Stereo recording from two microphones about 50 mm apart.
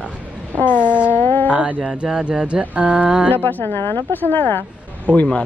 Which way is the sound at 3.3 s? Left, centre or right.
Left.